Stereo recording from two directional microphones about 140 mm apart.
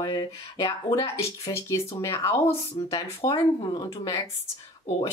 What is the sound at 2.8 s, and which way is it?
Speech, 40° left (ahead or behind).